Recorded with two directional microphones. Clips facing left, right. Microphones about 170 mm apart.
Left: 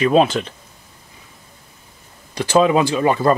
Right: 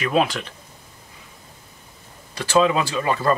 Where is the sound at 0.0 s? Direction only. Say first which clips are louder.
Left 6 dB; 30° left (ahead or behind).